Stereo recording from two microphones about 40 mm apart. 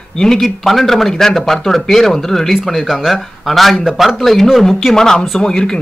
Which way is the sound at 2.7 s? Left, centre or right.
Centre.